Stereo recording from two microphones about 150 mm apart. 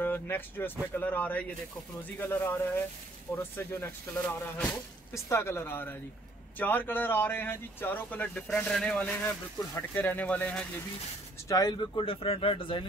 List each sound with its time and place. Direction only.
0.0 s speech: 15° left (ahead or behind)
11.4 s speech: 25° left (ahead or behind)